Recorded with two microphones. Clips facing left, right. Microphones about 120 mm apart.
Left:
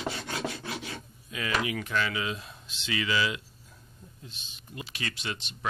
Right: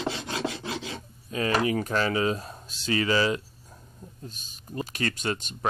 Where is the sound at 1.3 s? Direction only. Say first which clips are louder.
Right 6 dB; 40° right (ahead or behind).